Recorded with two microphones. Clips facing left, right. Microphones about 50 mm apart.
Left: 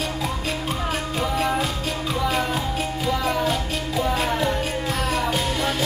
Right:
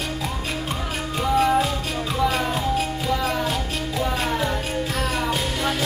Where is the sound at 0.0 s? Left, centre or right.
Centre.